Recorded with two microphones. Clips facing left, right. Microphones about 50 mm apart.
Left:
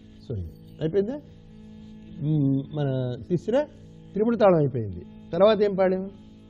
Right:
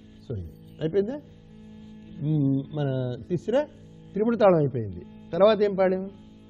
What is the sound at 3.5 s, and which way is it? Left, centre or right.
Speech, centre.